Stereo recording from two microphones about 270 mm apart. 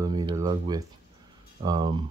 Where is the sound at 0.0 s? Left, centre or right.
Centre.